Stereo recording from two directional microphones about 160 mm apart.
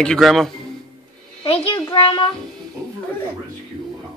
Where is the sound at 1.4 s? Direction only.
35° left (ahead or behind).